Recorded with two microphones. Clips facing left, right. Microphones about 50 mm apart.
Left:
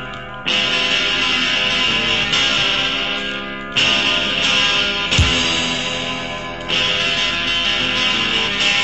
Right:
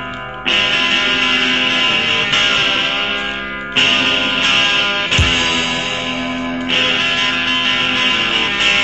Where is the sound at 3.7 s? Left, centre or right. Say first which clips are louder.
Right 3 dB; right.